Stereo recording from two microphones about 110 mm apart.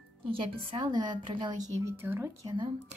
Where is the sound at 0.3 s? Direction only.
50° right (ahead or behind).